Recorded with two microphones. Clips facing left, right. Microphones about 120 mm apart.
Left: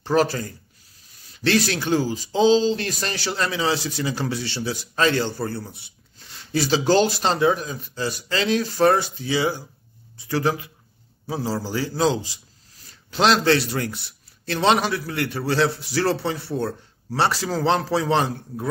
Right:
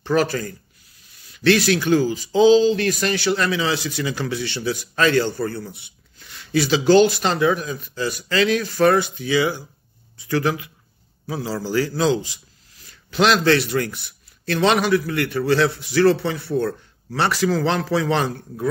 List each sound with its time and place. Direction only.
0.0 s speech: 30° left (ahead or behind)